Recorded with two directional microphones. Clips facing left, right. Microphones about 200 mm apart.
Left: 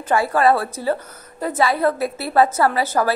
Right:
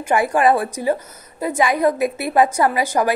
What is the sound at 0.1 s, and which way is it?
A woman's voice, 15° right (ahead or behind).